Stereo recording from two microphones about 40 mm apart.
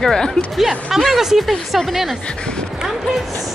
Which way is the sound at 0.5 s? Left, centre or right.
Centre.